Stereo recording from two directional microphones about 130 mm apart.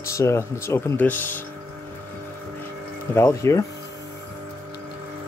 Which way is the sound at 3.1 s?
20° left (ahead or behind).